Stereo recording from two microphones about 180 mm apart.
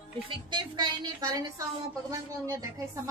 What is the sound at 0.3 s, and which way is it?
Music, 25° right (ahead or behind).